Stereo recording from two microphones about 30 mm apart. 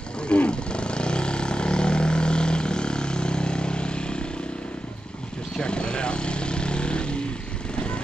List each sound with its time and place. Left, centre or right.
0.3 s vehicle: left
5.6 s vehicle: left